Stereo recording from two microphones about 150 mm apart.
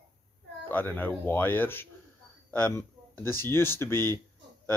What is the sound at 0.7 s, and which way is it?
Speech, 15° left (ahead or behind).